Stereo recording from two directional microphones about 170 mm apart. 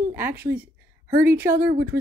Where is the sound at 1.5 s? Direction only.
65° right (ahead or behind).